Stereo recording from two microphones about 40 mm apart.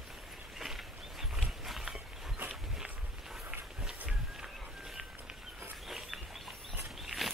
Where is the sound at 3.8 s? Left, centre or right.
Right.